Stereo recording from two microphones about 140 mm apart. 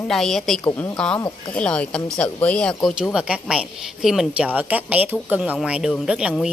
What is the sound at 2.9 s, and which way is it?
A woman's voice, 5° right (ahead or behind).